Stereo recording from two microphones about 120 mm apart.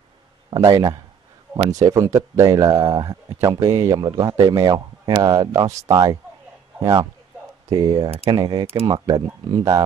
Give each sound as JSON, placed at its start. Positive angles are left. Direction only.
{"t": 0.7, "sound": "speech", "side_deg": -35}
{"t": 4.0, "sound": "speech", "side_deg": -40}
{"t": 7.7, "sound": "speech", "side_deg": -30}
{"t": 8.6, "sound": "speech", "side_deg": -50}